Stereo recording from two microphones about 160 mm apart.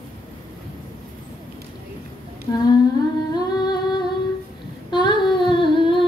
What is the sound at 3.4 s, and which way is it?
Humming, 25° left (ahead or behind).